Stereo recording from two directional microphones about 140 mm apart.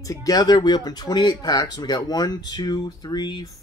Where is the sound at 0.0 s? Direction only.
25° left (ahead or behind).